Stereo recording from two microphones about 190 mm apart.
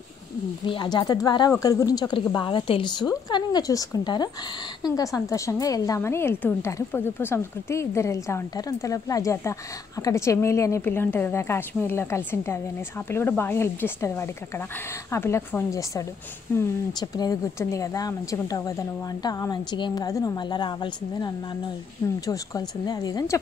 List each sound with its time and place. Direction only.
0.7 s a woman's voice: 25° left (ahead or behind)